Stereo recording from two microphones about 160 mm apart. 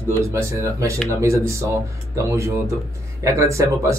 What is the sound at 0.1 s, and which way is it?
Speech, 15° right (ahead or behind).